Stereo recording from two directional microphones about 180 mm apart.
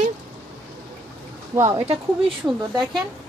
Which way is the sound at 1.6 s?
15° right (ahead or behind).